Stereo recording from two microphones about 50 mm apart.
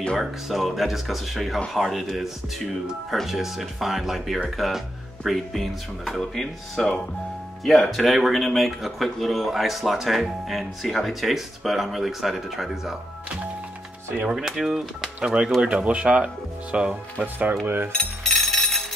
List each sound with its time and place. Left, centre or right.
0.2 s speech: centre
14.3 s speech: centre
15.1 s speech: centre
17.9 s music: centre